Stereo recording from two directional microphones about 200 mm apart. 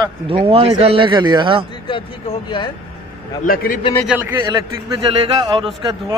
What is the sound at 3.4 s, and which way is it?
Speech, 45° left (ahead or behind).